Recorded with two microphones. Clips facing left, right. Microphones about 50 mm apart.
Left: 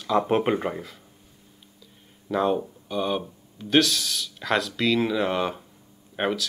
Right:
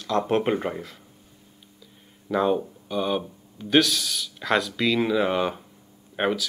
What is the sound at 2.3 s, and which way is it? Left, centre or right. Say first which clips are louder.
Speech: right 1 dB; centre.